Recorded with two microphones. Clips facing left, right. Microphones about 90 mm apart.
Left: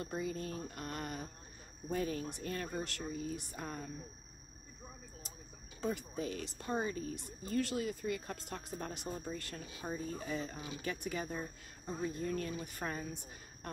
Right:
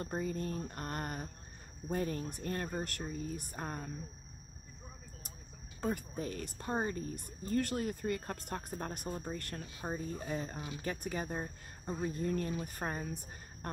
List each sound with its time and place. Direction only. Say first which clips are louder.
0.0 s a woman's voice: right 2 dB; 45° right (ahead or behind)
5.8 s a woman's voice: right 1 dB; 50° right (ahead or behind)
9.8 s speech: right 1 dB; 40° right (ahead or behind)